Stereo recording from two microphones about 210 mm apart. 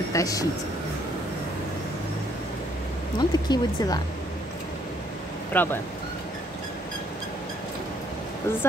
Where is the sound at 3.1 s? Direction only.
20° left (ahead or behind).